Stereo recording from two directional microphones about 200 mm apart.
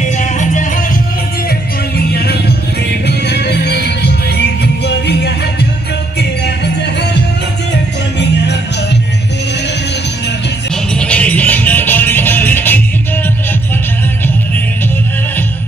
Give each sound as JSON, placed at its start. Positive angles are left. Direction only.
{"t": 0.0, "sound": "music", "side_deg": 40}
{"t": 2.0, "sound": "music", "side_deg": 55}
{"t": 7.7, "sound": "music", "side_deg": 60}
{"t": 11.0, "sound": "music", "side_deg": 5}